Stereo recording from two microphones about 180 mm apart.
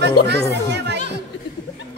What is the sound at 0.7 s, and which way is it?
Chatter, 75° right (ahead or behind).